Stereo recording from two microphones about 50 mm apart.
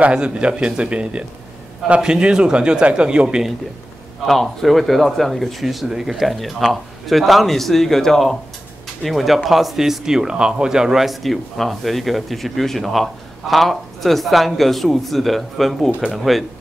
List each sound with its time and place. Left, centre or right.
0.0 s a man's voice: right
4.3 s speech: centre